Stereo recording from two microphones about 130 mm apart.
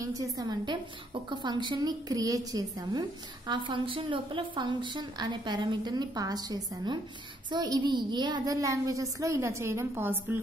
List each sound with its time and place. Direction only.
0.0 s a woman's voice: 25° right (ahead or behind)